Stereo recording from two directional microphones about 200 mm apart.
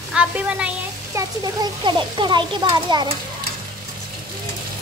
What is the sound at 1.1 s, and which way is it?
Speech, 20° right (ahead or behind).